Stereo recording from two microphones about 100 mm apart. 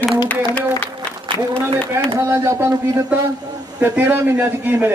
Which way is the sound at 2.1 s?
30° right (ahead or behind).